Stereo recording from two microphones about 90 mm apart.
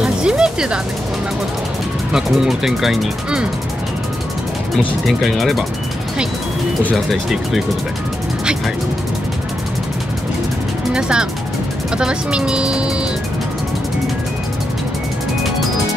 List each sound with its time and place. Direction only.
0.0 s music: 10° right (ahead or behind)
2.1 s speech: 5° right (ahead or behind)
4.7 s speech: centre (ahead or behind)
7.1 s speech: centre (ahead or behind)
10.9 s speech: 10° right (ahead or behind)